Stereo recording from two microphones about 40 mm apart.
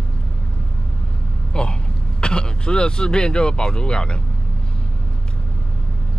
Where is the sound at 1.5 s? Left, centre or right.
Left.